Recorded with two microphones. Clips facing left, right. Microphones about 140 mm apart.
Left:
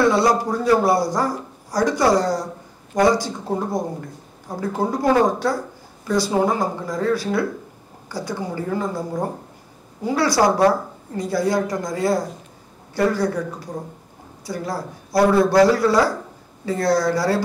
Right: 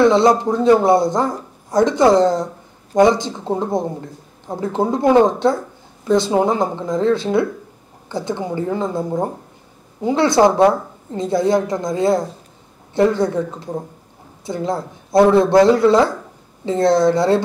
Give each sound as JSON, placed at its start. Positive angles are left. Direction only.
{"t": 0.0, "sound": "speech", "side_deg": -20}